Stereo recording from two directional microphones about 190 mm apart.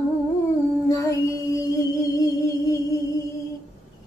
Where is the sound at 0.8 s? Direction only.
15° left (ahead or behind).